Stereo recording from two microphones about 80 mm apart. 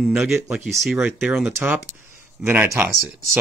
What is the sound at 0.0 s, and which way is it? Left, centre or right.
Speech, centre.